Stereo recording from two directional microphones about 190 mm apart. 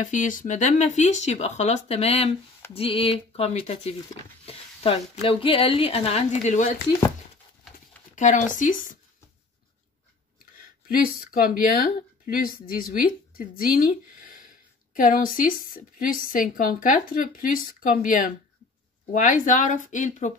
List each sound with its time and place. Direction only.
0.0 s speech: 40° left (ahead or behind)
8.2 s speech: 40° left (ahead or behind)
10.4 s speech: 50° left (ahead or behind)